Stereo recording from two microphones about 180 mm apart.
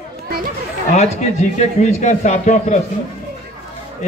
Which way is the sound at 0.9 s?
40° left (ahead or behind).